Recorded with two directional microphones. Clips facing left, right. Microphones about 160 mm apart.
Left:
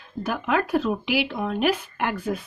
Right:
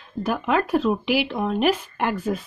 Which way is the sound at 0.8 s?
40° right (ahead or behind).